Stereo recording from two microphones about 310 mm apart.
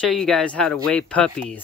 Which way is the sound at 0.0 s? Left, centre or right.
Centre.